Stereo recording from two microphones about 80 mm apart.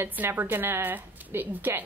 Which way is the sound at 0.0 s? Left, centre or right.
Right.